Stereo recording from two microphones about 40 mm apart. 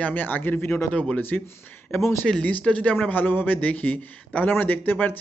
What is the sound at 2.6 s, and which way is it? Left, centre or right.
Speech, left.